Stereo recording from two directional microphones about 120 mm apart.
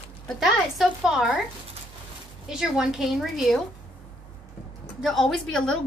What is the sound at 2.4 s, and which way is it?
A woman's voice, 5° right (ahead or behind).